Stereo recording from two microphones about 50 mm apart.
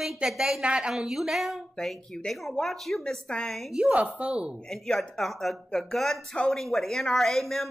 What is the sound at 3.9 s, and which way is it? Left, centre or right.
Speech, right.